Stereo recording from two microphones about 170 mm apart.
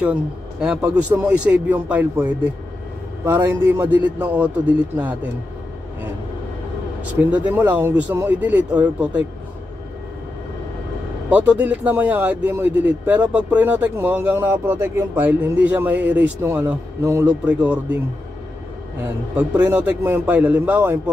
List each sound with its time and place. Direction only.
0.0 s a man's voice: 5° right (ahead or behind)
7.2 s speech: 10° right (ahead or behind)
11.2 s speech: 10° right (ahead or behind)
19.0 s speech: 10° right (ahead or behind)